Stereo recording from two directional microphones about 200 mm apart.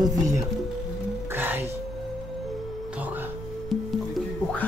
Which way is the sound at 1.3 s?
10° right (ahead or behind).